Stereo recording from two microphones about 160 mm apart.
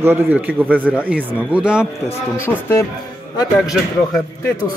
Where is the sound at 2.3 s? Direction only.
15° left (ahead or behind).